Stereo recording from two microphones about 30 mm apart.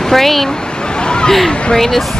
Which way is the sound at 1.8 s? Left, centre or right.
Centre.